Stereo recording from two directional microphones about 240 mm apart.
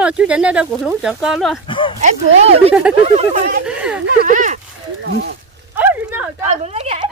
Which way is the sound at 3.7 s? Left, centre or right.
Centre.